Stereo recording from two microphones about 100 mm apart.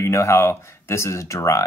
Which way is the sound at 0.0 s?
25° left (ahead or behind).